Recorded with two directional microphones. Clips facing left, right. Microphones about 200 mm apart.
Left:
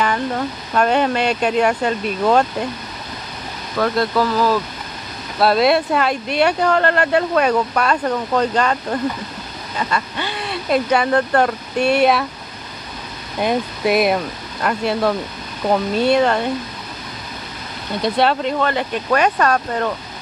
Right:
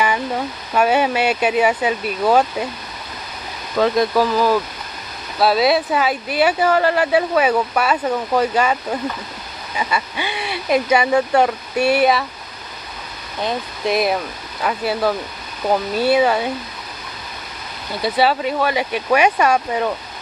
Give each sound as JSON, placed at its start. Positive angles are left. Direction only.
{"t": 0.7, "sound": "speech", "side_deg": -5}
{"t": 3.7, "sound": "speech", "side_deg": -15}
{"t": 5.4, "sound": "speech", "side_deg": 0}
{"t": 13.4, "sound": "speech", "side_deg": 10}
{"t": 13.9, "sound": "speech", "side_deg": 0}
{"t": 18.0, "sound": "speech", "side_deg": -5}